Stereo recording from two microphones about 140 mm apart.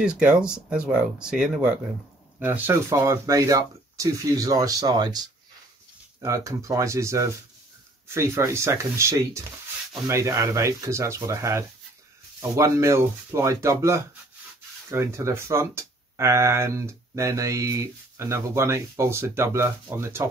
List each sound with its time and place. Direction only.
0.0 s speech: 5° right (ahead or behind)